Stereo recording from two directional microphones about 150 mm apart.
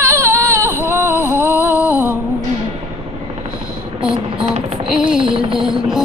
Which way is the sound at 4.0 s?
5° right (ahead or behind).